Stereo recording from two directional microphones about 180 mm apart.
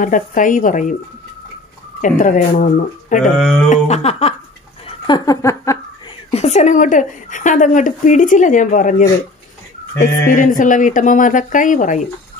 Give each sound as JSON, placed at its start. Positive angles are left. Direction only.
{"t": 0.0, "sound": "speech", "side_deg": 45}
{"t": 2.0, "sound": "speech", "side_deg": 45}
{"t": 3.3, "sound": "a sound", "side_deg": 5}
{"t": 3.6, "sound": "speech", "side_deg": 40}
{"t": 5.0, "sound": "speech", "side_deg": 20}
{"t": 6.3, "sound": "speech", "side_deg": 35}
{"t": 9.9, "sound": "speech", "side_deg": 15}
{"t": 10.3, "sound": "speech", "side_deg": 45}